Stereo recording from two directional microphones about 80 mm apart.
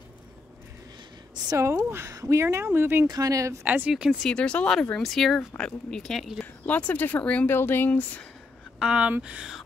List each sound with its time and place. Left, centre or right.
1.5 s speech: right
3.1 s speech: right
3.6 s speech: right
3.9 s speech: centre
4.3 s speech: centre
6.4 s speech: centre
8.7 s speech: centre